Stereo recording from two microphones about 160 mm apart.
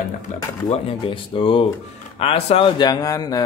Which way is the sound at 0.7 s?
35° left (ahead or behind).